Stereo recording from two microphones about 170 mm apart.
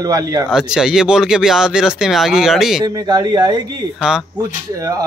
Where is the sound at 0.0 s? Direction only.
20° right (ahead or behind).